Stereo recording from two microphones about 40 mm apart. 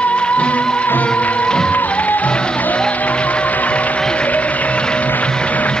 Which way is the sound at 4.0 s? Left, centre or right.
Left.